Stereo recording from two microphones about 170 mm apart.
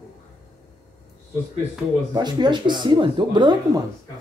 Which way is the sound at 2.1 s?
25° right (ahead or behind).